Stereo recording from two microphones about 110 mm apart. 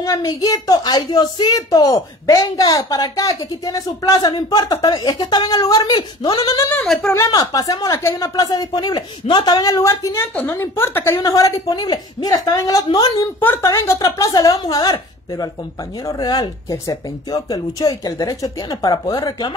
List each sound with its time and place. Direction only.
0.0 s speech: 30° left (ahead or behind)
6.8 s speech: 5° left (ahead or behind)
7.2 s speech: 30° left (ahead or behind)
7.9 s a woman's voice: 20° left (ahead or behind)
8.2 s speech: 35° left (ahead or behind)
10.3 s a woman's voice: 20° left (ahead or behind)
11.2 s speech: 35° left (ahead or behind)
13.4 s speech: 20° left (ahead or behind)
13.7 s speech: 35° left (ahead or behind)